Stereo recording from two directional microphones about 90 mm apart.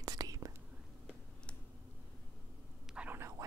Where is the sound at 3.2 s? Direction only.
35° right (ahead or behind).